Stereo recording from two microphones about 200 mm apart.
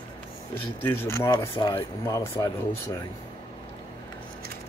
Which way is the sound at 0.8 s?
10° left (ahead or behind).